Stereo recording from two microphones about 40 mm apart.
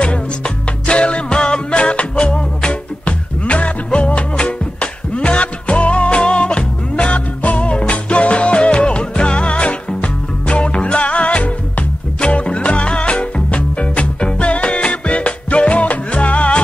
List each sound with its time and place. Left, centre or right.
0.0 s music: left